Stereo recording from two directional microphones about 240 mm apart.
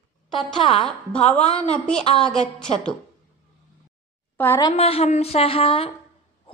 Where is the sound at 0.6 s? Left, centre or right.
Left.